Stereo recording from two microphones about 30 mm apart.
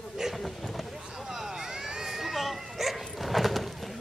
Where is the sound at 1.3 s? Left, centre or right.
Centre.